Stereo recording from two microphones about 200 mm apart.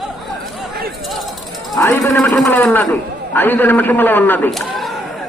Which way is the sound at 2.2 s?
5° left (ahead or behind).